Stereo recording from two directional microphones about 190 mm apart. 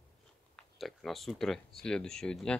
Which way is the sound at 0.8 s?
Centre (ahead or behind).